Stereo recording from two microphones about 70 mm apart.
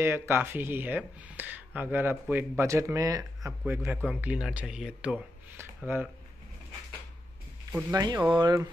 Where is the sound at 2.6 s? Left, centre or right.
Right.